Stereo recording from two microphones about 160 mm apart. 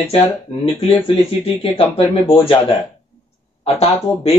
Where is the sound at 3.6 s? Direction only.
40° left (ahead or behind).